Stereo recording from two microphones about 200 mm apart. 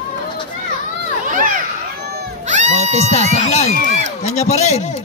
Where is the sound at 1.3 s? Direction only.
45° right (ahead or behind).